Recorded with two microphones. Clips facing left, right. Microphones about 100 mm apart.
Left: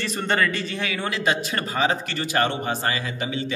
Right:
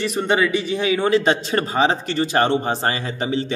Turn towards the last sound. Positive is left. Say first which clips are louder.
# right 5 dB
turn(degrees=-35)  # may be behind; listen again after turning